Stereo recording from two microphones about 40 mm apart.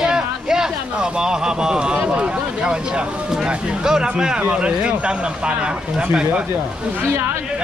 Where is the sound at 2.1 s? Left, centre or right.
Right.